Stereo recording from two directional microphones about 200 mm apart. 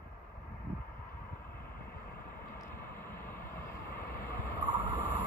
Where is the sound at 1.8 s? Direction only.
45° left (ahead or behind).